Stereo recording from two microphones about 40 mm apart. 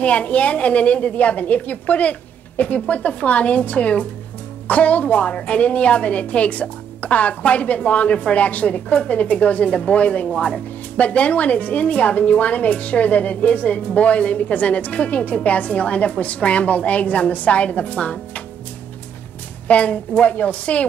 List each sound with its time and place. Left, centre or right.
0.0 s a woman's voice: left
19.7 s a woman's voice: left